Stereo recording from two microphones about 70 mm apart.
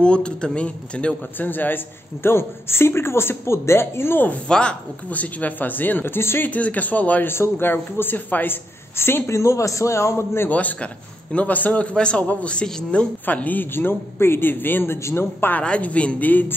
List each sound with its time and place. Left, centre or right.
0.0 s a man's voice: centre
1.5 s a woman's voice: left
4.5 s speech: centre; by 6.5 s left
6.5 s speech: left
7.3 s a woman's voice: left
10.5 s a man's voice: left
13.2 s a woman's voice: left
15.5 s speech: centre